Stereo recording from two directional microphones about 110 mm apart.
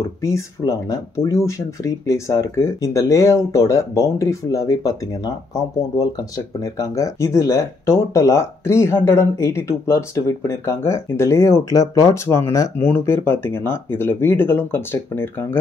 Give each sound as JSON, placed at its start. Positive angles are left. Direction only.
{"t": 0.2, "sound": "speech", "side_deg": 30}